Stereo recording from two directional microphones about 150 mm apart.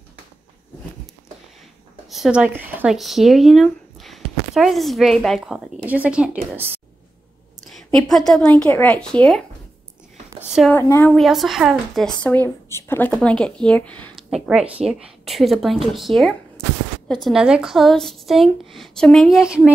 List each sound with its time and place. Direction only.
2.0 s speech: centre (ahead or behind)
7.7 s speech: centre (ahead or behind)
10.7 s a woman's voice: 15° left (ahead or behind)
11.1 s speech: centre (ahead or behind)
12.6 s a woman's voice: 15° left (ahead or behind)
14.3 s speech: 5° right (ahead or behind)